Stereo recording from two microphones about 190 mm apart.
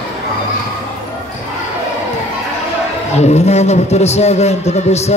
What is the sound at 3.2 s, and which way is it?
A man's voice, 35° left (ahead or behind).